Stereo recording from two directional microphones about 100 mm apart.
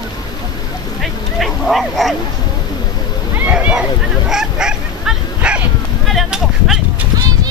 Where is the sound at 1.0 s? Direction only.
Centre (ahead or behind).